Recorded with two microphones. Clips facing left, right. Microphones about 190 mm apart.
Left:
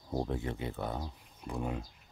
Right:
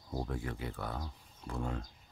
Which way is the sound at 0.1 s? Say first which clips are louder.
Left 4 dB; 25° left (ahead or behind).